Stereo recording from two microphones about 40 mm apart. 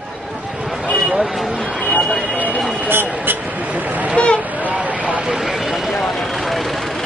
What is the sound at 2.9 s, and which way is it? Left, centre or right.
Vehicle, right.